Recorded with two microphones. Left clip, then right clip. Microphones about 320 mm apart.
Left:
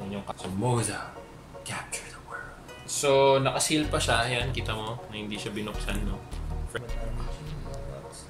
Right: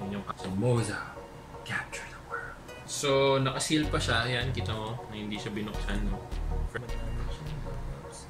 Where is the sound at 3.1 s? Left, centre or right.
Left.